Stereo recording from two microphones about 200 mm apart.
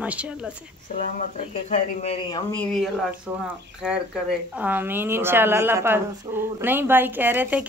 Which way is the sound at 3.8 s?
5° right (ahead or behind).